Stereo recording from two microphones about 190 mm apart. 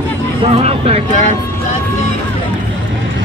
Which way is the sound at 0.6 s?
35° right (ahead or behind).